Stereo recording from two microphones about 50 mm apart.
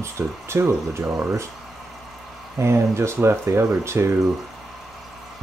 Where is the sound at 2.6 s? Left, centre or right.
Right.